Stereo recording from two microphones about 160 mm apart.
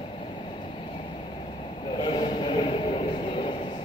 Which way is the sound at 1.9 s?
30° left (ahead or behind).